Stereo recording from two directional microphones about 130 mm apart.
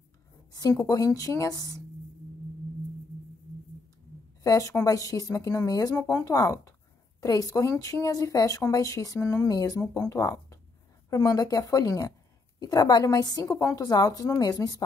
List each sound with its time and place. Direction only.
0.5 s a sound: 30° left (ahead or behind)
0.8 s speech: 25° left (ahead or behind)
4.4 s a woman's voice: 25° left (ahead or behind)